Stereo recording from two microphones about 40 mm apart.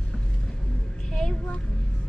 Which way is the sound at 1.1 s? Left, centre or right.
Centre.